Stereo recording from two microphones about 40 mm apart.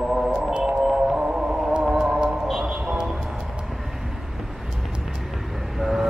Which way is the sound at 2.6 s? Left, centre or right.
Right.